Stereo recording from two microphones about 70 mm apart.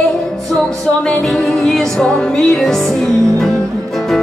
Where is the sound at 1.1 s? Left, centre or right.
Centre.